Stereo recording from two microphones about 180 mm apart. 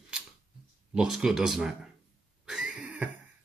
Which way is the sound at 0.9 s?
5° right (ahead or behind).